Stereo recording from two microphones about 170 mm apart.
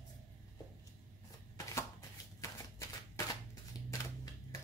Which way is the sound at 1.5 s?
15° left (ahead or behind).